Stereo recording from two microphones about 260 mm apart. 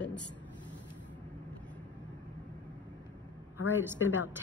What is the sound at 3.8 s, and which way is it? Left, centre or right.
Speech, centre.